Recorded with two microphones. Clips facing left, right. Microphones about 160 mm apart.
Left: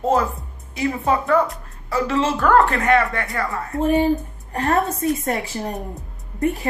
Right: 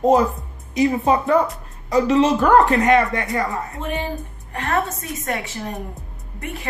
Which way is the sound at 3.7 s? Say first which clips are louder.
Left 9 dB; 40° left (ahead or behind).